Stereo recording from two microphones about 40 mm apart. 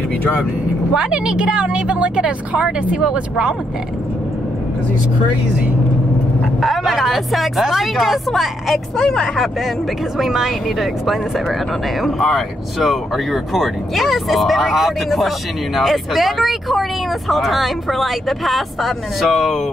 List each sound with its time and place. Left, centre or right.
0.9 s speech: centre
3.0 s speech: centre
6.6 s speech: centre
8.9 s speech: centre
10.1 s speech: centre